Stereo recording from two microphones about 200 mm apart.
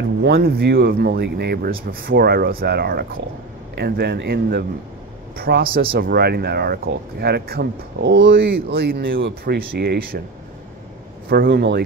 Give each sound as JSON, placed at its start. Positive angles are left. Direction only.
{"t": 0.2, "sound": "speech", "side_deg": -50}
{"t": 11.2, "sound": "speech", "side_deg": -55}